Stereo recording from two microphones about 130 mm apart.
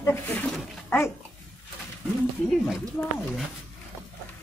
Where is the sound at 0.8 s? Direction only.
20° left (ahead or behind).